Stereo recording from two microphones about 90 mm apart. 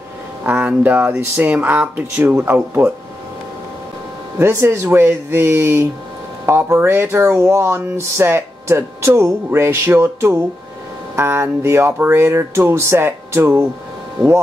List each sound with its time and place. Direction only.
0.5 s speech: 15° right (ahead or behind)
4.4 s speech: 30° right (ahead or behind)